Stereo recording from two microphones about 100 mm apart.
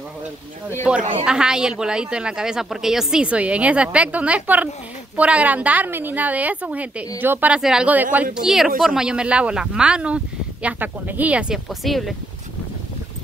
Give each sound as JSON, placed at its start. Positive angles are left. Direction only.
{"t": 0.8, "sound": "speech", "side_deg": -10}
{"t": 8.4, "sound": "speech", "side_deg": -5}